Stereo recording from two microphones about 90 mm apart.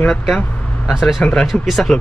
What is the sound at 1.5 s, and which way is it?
Speech, centre (ahead or behind).